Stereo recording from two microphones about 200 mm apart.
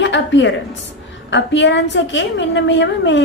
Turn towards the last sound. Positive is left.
turn(degrees=60)  # may be behind; listen again after turning